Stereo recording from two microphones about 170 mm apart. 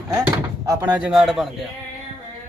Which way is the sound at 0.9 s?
5° right (ahead or behind).